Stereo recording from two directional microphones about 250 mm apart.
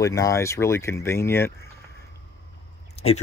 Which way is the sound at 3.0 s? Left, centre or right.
Left.